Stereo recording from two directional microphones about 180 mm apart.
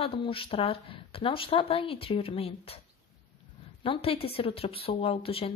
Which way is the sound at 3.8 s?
30° left (ahead or behind).